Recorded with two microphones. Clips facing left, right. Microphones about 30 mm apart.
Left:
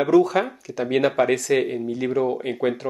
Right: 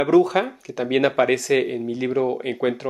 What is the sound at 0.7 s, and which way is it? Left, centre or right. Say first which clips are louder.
Speech: right 1 dB; centre.